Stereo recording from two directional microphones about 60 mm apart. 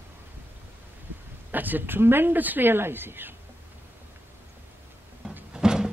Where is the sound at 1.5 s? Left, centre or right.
Right.